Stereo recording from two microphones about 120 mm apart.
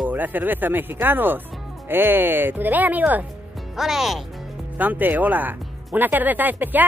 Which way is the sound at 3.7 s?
5° right (ahead or behind).